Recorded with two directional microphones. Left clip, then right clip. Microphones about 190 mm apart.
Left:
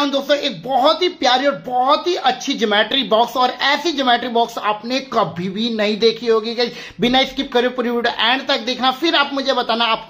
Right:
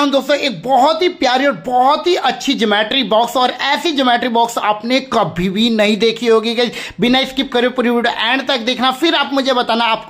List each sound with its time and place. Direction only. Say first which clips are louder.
0.0 s speech: right 3 dB; 25° right (ahead or behind)